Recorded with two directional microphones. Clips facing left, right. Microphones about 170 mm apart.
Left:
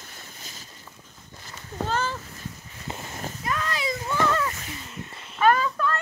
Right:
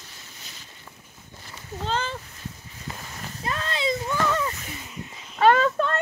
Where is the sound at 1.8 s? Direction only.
20° right (ahead or behind).